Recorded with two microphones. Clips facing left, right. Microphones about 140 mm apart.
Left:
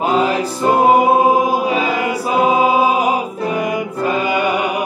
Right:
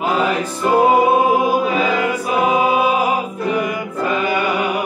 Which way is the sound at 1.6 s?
20° left (ahead or behind).